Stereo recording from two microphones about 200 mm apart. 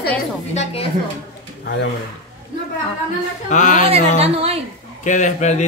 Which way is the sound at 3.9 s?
30° right (ahead or behind).